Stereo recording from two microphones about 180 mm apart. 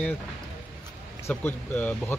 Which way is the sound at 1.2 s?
10° left (ahead or behind).